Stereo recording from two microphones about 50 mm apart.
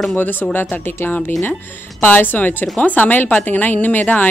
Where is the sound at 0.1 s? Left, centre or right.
Left.